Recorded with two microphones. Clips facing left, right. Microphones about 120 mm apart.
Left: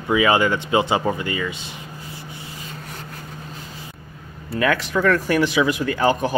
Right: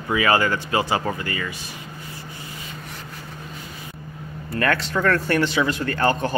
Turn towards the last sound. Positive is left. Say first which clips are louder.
# left 2 dB
turn(degrees=10)  # may be behind; listen again after turning